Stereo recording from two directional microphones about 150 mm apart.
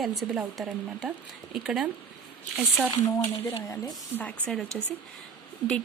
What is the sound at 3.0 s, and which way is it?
Speech, 20° left (ahead or behind).